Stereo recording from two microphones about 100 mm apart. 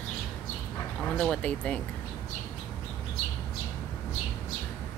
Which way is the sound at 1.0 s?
10° left (ahead or behind).